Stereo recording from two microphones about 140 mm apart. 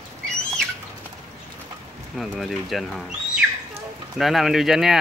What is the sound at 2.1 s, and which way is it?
Speech, centre (ahead or behind).